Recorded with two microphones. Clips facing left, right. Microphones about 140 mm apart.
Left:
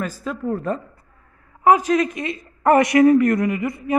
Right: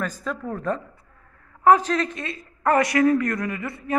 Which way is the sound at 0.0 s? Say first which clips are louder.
Left 3 dB; 5° left (ahead or behind).